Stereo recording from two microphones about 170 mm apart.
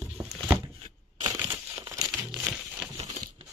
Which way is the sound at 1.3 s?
20° right (ahead or behind).